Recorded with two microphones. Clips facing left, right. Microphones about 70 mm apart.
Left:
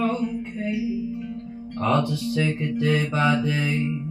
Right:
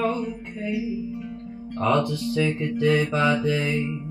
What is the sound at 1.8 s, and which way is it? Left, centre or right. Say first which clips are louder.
Speech: even; centre.